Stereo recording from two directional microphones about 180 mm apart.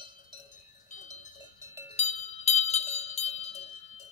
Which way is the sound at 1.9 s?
40° left (ahead or behind).